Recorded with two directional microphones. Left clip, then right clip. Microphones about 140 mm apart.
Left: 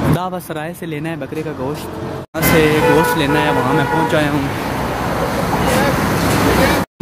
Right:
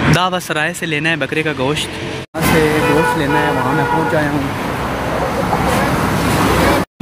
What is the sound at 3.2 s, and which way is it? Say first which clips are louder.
Speech: even; 10° left (ahead or behind).